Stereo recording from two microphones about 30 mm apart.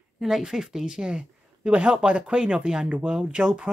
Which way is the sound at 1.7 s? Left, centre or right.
Right.